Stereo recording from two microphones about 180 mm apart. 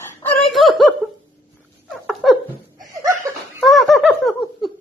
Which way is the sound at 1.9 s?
5° right (ahead or behind).